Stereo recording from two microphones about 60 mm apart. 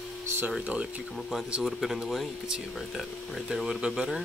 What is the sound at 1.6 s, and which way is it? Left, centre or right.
Speech, centre.